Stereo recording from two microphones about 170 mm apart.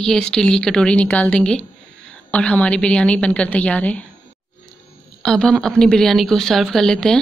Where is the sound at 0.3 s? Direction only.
5° left (ahead or behind).